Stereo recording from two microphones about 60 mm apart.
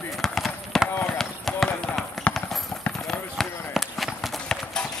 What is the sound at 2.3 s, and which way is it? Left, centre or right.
Clip-clop, left.